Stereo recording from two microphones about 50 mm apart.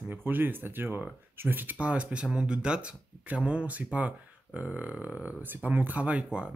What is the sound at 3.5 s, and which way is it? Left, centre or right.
Speech, right.